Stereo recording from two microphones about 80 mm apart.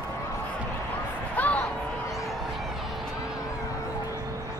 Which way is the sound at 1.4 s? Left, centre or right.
Centre.